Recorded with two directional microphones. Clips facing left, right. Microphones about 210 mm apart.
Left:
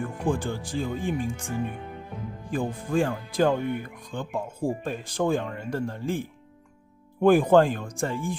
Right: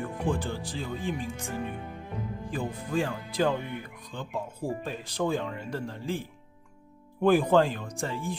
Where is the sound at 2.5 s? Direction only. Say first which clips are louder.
Left 5 dB; 50° left (ahead or behind).